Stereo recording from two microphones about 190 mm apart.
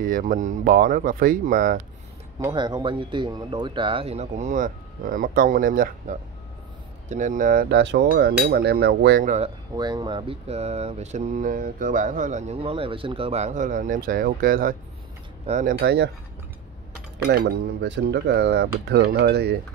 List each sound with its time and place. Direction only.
0.0 s speech: 45° right (ahead or behind)
2.4 s speech: 25° right (ahead or behind); by 9.2 s 55° right (ahead or behind)
9.2 s speech: 40° right (ahead or behind)
9.8 s speech: 20° right (ahead or behind); by 15.7 s 40° right (ahead or behind)
15.8 s speech: 55° right (ahead or behind)
17.3 s speech: 60° right (ahead or behind)